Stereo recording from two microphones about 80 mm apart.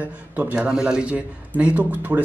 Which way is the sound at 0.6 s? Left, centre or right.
Centre.